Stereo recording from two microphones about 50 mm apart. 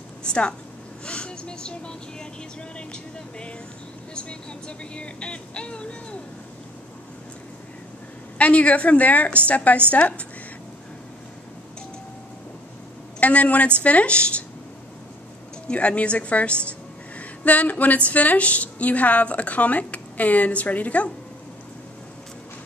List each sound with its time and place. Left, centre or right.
0.2 s a sound: centre
1.0 s a woman's voice: centre
8.4 s a woman's voice: left
13.2 s a woman's voice: left
15.7 s a woman's voice: left